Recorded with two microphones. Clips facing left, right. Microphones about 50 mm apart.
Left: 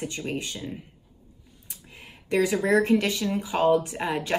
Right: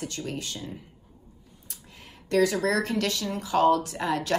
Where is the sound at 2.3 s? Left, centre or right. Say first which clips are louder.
Left 1 dB; centre.